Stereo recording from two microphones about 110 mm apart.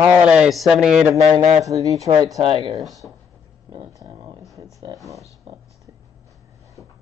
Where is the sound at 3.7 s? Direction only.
35° right (ahead or behind).